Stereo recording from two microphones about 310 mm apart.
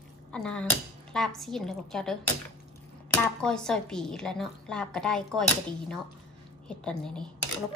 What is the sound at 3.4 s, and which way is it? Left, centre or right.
A woman's voice, centre.